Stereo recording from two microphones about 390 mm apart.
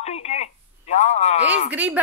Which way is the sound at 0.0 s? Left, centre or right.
Centre.